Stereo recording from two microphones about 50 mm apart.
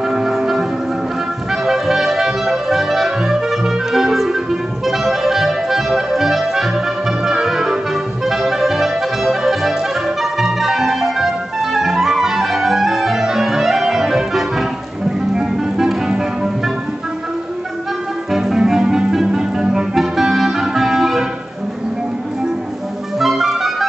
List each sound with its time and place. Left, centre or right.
0.0 s music: centre
1.5 s clarinet: centre
18.3 s music: centre
23.1 s music: centre